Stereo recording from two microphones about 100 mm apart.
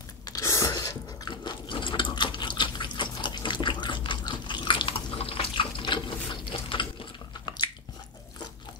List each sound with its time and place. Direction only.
0.3 s ratchet: 30° left (ahead or behind); by 6.9 s 60° left (ahead or behind)